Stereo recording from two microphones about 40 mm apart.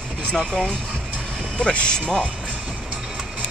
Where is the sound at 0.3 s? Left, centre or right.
Centre.